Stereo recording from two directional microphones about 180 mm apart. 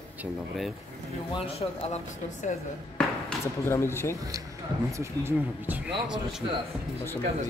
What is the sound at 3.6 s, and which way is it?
Speech, 15° left (ahead or behind).